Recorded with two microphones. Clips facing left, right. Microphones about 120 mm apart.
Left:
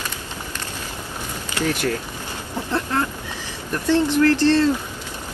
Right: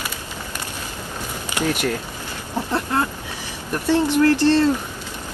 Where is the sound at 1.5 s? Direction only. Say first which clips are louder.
Right 1 dB; 15° right (ahead or behind).